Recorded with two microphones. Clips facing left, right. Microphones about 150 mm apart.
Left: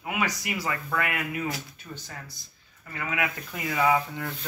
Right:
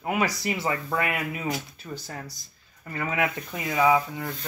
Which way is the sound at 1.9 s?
40° right (ahead or behind).